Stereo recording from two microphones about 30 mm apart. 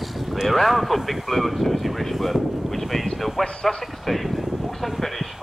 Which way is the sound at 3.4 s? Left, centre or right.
Centre.